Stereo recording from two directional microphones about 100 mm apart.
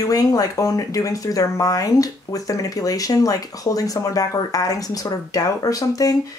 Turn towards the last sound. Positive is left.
turn(degrees=35)  # may be behind; listen again after turning